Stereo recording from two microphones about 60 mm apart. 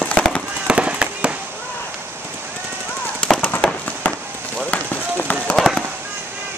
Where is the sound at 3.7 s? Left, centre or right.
Left.